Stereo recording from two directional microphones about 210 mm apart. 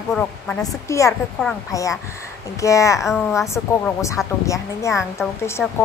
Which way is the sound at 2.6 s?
15° left (ahead or behind).